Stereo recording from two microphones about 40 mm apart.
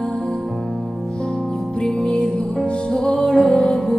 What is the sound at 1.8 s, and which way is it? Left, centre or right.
Music, left.